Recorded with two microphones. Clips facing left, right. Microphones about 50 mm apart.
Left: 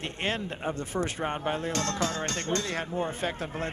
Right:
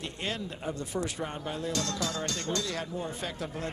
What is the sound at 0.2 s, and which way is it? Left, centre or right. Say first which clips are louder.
Speech: left 5 dB; left.